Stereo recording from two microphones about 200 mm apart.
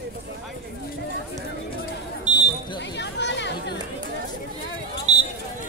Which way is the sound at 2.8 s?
60° left (ahead or behind).